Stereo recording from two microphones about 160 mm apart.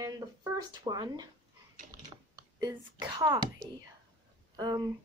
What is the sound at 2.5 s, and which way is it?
A woman's voice, 25° right (ahead or behind).